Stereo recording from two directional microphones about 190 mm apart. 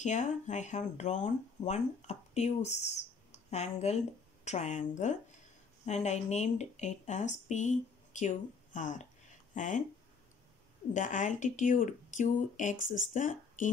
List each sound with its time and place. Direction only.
0.0 s speech: 40° left (ahead or behind)
10.9 s speech: 40° left (ahead or behind)
12.8 s speech: 85° left
13.1 s speech: 40° left (ahead or behind)